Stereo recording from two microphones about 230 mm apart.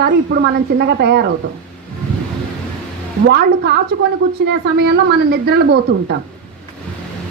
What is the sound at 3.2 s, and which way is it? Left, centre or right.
A woman's voice, right.